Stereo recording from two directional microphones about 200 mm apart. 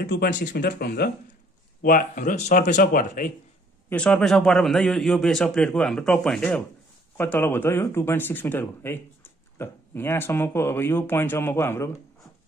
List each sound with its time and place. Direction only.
0.1 s speech: 45° left (ahead or behind)
3.9 s speech: 5° left (ahead or behind)